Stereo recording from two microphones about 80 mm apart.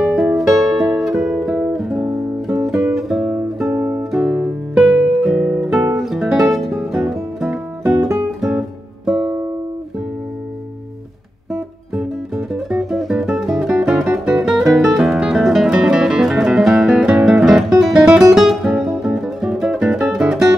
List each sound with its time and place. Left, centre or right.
0.0 s music: centre
3.6 s music: right
4.1 s guitar: centre
6.0 s music: centre
11.5 s music: centre